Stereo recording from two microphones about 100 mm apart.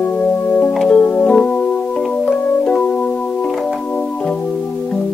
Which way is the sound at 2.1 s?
10° left (ahead or behind).